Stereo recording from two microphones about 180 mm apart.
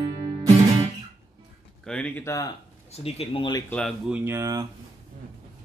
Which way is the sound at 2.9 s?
35° left (ahead or behind).